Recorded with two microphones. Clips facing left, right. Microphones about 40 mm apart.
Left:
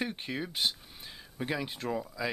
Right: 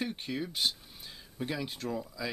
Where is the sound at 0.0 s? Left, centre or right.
Centre.